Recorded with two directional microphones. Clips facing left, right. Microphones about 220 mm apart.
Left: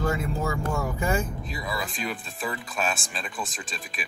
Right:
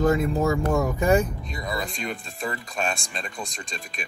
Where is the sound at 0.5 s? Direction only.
15° right (ahead or behind).